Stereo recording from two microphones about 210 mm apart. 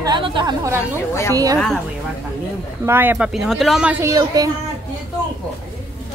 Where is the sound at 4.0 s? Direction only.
15° right (ahead or behind).